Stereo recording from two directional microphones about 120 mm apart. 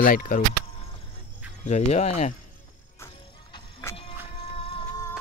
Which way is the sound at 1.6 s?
70° left (ahead or behind).